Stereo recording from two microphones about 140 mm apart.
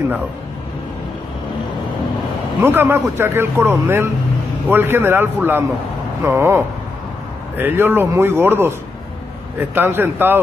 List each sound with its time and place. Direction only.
2.6 s a man's voice: 15° right (ahead or behind)